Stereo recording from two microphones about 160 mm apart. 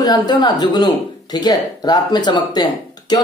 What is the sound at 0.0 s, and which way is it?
Speech, 25° left (ahead or behind).